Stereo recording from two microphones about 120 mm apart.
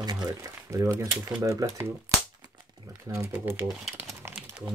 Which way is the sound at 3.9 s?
20° right (ahead or behind).